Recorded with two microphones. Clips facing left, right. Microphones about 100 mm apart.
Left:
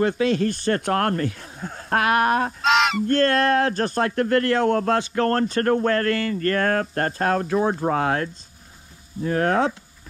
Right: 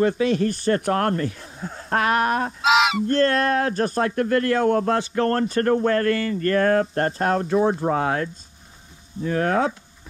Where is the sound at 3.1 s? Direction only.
55° left (ahead or behind).